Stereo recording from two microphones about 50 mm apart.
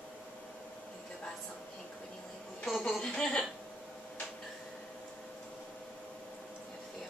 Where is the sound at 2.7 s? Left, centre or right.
Centre.